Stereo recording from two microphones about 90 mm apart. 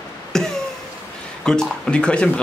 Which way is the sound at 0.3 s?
5° left (ahead or behind).